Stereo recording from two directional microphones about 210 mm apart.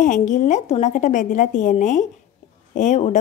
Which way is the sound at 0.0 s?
35° left (ahead or behind).